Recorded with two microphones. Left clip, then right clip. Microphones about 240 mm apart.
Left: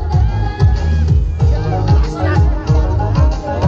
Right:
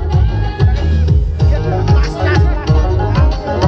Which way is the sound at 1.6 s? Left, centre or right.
Right.